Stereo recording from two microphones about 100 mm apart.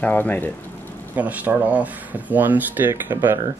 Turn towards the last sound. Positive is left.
turn(degrees=-20)  # may be behind; listen again after turning